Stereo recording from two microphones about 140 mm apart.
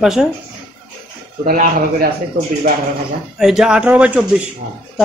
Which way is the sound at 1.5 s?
80° right.